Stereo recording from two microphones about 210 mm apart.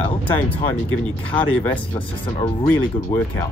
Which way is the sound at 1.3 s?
10° left (ahead or behind).